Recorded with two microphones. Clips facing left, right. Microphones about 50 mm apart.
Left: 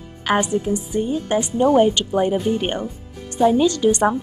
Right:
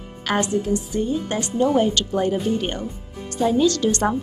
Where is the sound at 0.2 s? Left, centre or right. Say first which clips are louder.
Left 2 dB; centre.